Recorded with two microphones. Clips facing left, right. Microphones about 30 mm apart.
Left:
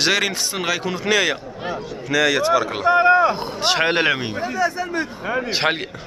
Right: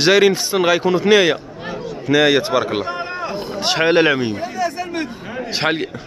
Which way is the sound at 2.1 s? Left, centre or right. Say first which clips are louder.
Right 3 dB; right.